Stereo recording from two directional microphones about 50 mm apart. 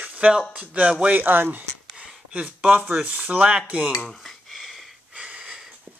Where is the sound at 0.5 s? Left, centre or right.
Right.